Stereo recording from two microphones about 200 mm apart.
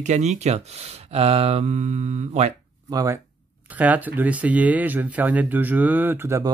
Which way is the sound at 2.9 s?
15° right (ahead or behind).